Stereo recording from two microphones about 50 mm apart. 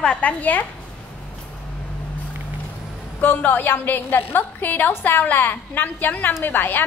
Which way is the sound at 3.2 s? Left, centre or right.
Left.